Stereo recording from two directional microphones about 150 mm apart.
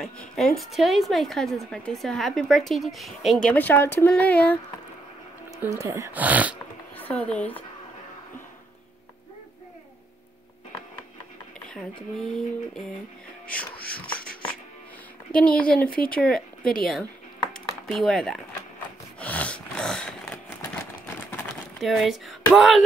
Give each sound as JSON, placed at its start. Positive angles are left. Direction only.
{"t": 0.0, "sound": "a woman's voice", "side_deg": 5}
{"t": 5.7, "sound": "speech", "side_deg": -20}
{"t": 7.0, "sound": "speech", "side_deg": 10}
{"t": 13.5, "sound": "music", "side_deg": 10}
{"t": 15.3, "sound": "a woman's voice", "side_deg": 5}
{"t": 17.0, "sound": "a sound", "side_deg": 5}
{"t": 19.1, "sound": "snort", "side_deg": 10}
{"t": 21.7, "sound": "speech", "side_deg": 0}